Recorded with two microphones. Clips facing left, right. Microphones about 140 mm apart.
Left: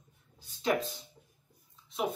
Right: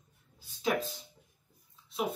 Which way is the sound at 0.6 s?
5° right (ahead or behind).